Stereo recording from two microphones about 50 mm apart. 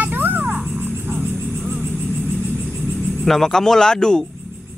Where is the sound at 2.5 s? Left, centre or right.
Centre.